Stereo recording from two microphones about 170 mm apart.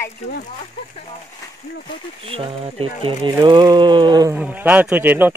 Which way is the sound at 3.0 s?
30° right (ahead or behind).